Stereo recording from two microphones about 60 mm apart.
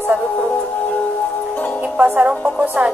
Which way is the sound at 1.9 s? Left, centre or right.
Right.